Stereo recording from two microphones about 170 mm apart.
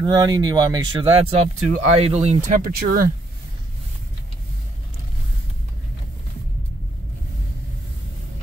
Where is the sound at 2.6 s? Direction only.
55° right (ahead or behind).